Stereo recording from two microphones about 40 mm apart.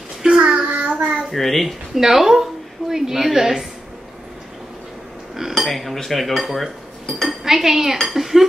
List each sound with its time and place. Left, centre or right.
0.2 s child singing: centre
0.6 s child singing: right
1.3 s a child's voice: centre
2.0 s a woman's voice: centre
5.6 s a child's voice: centre
7.4 s dishes: centre